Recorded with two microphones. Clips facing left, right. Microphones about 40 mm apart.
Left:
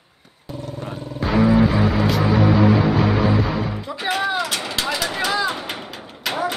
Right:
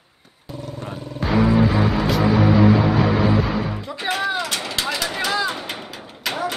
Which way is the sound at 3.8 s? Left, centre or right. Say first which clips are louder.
Left 3 dB; centre.